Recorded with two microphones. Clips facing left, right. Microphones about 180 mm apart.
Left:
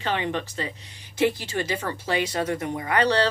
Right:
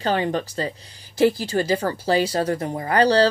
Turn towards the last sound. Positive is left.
turn(degrees=-35)  # may be behind; listen again after turning